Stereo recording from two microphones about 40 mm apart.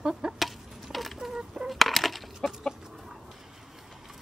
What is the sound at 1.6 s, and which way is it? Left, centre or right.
Chicken, centre.